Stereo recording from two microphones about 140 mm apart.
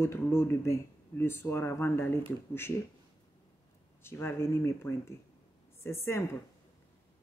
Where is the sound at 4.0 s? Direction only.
15° left (ahead or behind).